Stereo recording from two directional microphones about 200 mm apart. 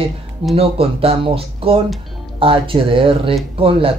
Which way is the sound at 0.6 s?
30° right (ahead or behind).